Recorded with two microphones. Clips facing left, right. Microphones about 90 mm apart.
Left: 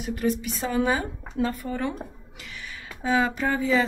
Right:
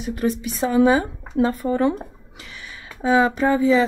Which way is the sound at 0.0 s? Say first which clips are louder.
Right 3 dB; 25° right (ahead or behind).